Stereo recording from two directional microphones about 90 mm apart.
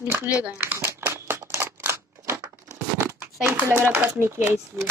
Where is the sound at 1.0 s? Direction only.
25° right (ahead or behind).